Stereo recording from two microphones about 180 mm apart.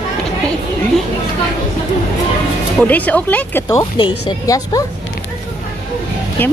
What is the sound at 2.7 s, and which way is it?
Speech, 10° left (ahead or behind).